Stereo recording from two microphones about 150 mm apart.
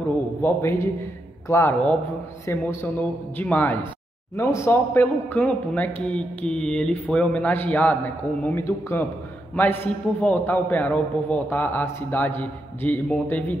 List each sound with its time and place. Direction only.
0.4 s speech: 15° left (ahead or behind)